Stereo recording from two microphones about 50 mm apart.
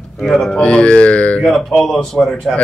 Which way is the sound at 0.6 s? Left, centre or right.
Left.